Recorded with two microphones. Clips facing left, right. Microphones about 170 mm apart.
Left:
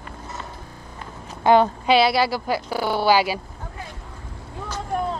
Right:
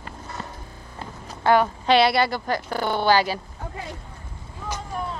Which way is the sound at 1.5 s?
15° left (ahead or behind).